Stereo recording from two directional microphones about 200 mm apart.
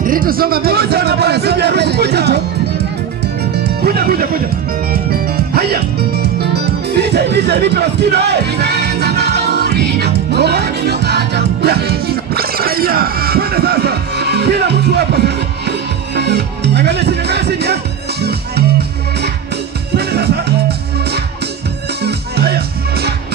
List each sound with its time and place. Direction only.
0.0 s speech: 45° right (ahead or behind)
3.5 s music: 50° right (ahead or behind)
5.5 s music: 50° right (ahead or behind)
16.2 s speech: 55° right (ahead or behind)
20.0 s music: 55° right (ahead or behind)
22.0 s music: 50° right (ahead or behind)